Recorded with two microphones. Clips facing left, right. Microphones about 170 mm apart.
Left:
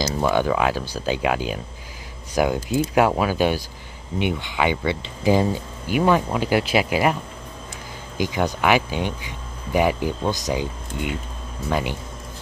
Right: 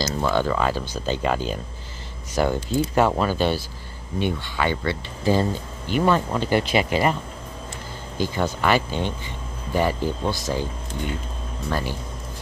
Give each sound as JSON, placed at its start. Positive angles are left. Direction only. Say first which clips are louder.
{"t": 0.0, "sound": "speech", "louder": "left 2 dB", "side_deg": 15}
{"t": 8.2, "sound": "speech", "louder": "left 1 dB", "side_deg": 15}